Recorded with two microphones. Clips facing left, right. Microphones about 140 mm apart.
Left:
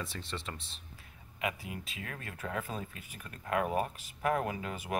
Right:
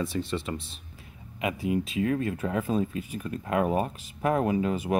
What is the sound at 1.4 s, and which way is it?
Speech, 20° right (ahead or behind).